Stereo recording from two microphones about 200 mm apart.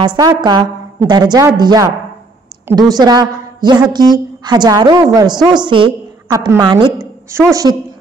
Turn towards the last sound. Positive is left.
turn(degrees=-15)  # may be behind; listen again after turning